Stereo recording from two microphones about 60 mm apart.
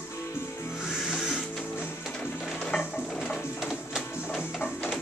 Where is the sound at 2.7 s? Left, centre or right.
Left.